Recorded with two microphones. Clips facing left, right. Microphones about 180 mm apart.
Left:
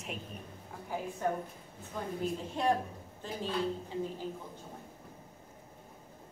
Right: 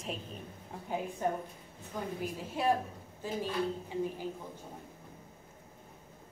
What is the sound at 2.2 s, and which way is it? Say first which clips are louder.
Speech: left 4 dB; 5° right (ahead or behind).